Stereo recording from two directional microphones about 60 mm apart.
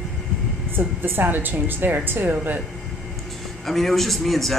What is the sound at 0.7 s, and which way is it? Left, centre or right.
A woman's voice, right.